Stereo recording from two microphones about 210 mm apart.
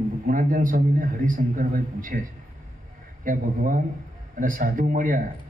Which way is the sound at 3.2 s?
40° right (ahead or behind).